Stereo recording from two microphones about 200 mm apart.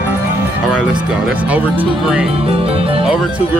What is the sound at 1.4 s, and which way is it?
Speech, 5° right (ahead or behind).